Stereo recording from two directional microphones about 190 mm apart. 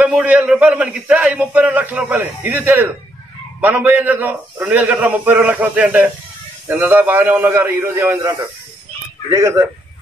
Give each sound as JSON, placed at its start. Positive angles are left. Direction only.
{"t": 0.0, "sound": "a man's voice", "side_deg": -5}